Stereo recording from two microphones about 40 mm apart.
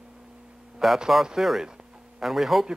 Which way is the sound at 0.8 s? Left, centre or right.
Centre.